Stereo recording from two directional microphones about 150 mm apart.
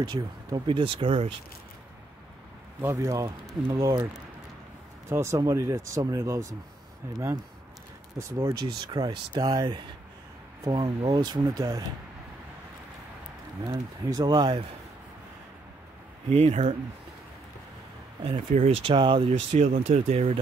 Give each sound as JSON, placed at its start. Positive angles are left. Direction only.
{"t": 0.0, "sound": "speech", "side_deg": -30}
{"t": 2.8, "sound": "speech", "side_deg": -20}
{"t": 5.1, "sound": "speech", "side_deg": -20}
{"t": 8.2, "sound": "speech", "side_deg": -20}
{"t": 13.7, "sound": "speech", "side_deg": -25}
{"t": 16.3, "sound": "speech", "side_deg": -45}
{"t": 18.5, "sound": "speech", "side_deg": -45}
{"t": 19.5, "sound": "speech", "side_deg": -50}